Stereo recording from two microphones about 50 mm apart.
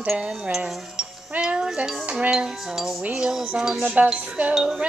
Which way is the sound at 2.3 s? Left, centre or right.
Centre.